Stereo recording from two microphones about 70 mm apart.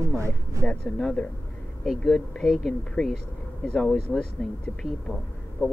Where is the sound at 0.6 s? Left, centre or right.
Centre.